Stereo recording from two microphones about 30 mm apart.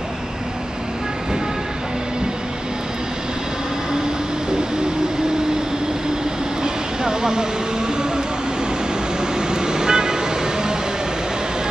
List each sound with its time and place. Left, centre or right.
6.6 s vehicle: right
9.5 s vehicle: right